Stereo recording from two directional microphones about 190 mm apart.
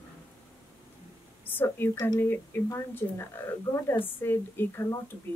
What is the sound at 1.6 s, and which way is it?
A woman's voice, 10° left (ahead or behind).